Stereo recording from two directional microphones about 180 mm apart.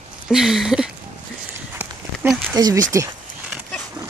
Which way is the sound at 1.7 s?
10° right (ahead or behind).